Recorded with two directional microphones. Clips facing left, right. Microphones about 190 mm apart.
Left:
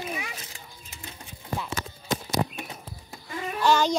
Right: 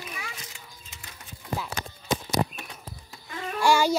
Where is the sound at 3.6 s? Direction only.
10° right (ahead or behind).